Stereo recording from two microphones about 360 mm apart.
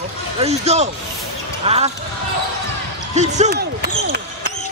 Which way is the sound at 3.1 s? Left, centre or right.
Centre.